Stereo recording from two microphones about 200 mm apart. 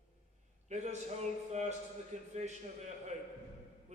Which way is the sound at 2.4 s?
35° right (ahead or behind).